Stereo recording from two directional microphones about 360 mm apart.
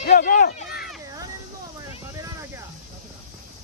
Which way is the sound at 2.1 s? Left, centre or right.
Centre.